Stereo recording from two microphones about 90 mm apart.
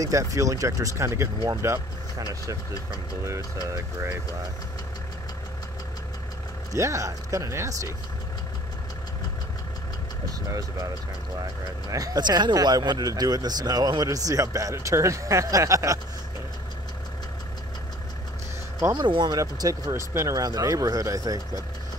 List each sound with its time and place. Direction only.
0.0 s speech: 35° right (ahead or behind)
6.7 s speech: 35° right (ahead or behind)
11.9 s speech: 45° right (ahead or behind)
18.9 s speech: 55° right (ahead or behind)
19.3 s speech: 40° right (ahead or behind)